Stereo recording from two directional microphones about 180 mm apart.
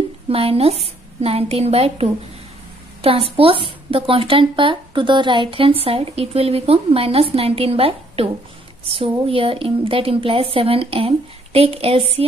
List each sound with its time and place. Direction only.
0.3 s a woman's voice: 30° right (ahead or behind)